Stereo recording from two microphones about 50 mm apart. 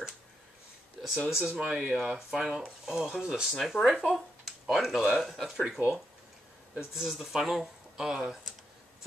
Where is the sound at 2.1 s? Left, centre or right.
Centre.